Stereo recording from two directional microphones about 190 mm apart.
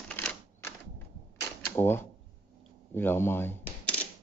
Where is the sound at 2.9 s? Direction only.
10° left (ahead or behind).